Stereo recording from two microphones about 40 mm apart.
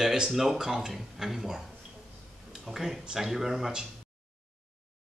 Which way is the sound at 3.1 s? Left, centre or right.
Centre.